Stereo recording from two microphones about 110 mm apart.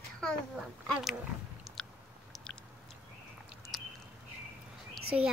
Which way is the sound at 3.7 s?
Centre (ahead or behind).